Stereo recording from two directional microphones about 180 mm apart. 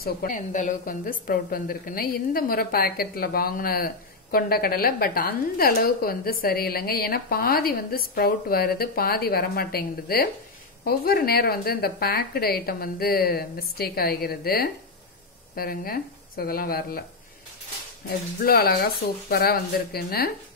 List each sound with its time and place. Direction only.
0.0 s a woman's voice: 50° left (ahead or behind)
18.4 s a woman's voice: 55° left (ahead or behind)